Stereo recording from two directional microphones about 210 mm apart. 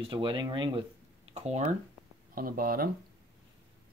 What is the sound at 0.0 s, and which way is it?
Speech, 25° right (ahead or behind).